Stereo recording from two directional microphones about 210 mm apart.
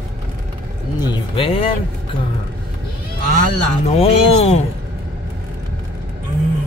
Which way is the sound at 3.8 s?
30° left (ahead or behind).